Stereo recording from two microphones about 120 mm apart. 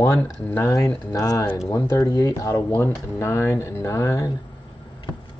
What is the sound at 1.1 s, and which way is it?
Speech, 30° left (ahead or behind).